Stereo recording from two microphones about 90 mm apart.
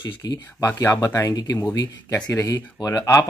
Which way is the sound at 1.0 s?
35° left (ahead or behind).